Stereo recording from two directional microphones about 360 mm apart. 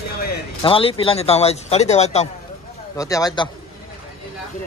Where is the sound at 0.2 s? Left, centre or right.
Centre.